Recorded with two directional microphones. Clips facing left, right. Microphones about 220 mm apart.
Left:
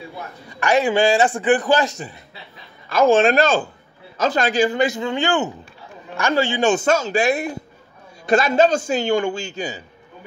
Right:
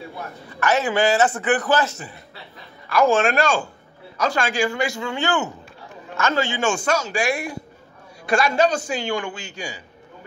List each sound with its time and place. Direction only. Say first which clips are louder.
0.6 s a man's voice: left 3 dB; 15° left (ahead or behind)
3.1 s speech: left 8 dB; 30° left (ahead or behind)
4.6 s a man's voice: left 5 dB; 20° left (ahead or behind)